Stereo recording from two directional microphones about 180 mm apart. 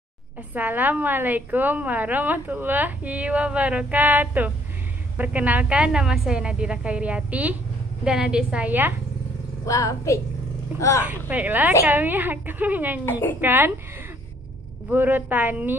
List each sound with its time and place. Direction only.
0.5 s a woman's voice: 10° right (ahead or behind)
9.7 s a woman's voice: 20° left (ahead or behind)
11.1 s a woman's voice: 10° right (ahead or behind)
14.9 s a woman's voice: 10° right (ahead or behind)